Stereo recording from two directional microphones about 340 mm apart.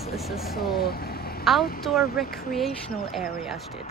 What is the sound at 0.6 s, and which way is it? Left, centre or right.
Speech, left.